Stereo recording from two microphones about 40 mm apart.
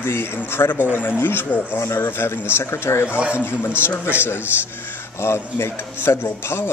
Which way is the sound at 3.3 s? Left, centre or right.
Left.